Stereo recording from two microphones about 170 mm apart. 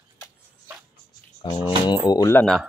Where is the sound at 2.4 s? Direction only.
Centre (ahead or behind).